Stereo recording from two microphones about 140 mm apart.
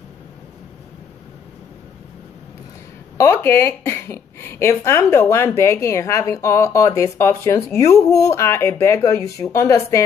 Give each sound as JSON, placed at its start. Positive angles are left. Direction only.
{"t": 3.2, "sound": "a woman's voice", "side_deg": 20}